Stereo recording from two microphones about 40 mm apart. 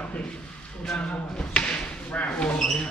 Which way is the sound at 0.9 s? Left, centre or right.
Left.